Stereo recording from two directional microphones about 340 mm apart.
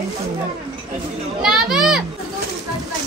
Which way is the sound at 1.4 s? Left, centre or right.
Centre.